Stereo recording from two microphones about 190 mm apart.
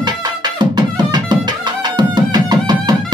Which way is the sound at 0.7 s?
20° right (ahead or behind).